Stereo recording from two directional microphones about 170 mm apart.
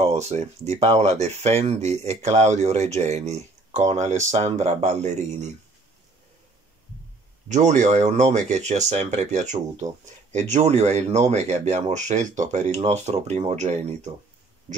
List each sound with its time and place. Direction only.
0.0 s speech: 40° right (ahead or behind)
7.4 s speech: 45° right (ahead or behind)